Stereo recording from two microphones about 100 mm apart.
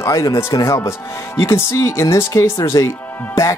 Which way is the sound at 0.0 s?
30° left (ahead or behind).